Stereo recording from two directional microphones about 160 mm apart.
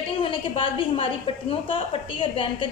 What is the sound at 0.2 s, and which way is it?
A woman's voice, 35° left (ahead or behind).